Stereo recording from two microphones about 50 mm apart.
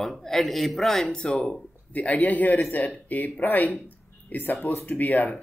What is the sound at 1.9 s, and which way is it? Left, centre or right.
Speech, left.